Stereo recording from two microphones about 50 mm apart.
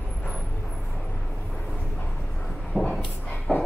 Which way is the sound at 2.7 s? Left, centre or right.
Centre.